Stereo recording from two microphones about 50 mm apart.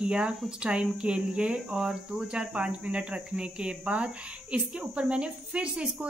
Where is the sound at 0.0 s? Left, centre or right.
Centre.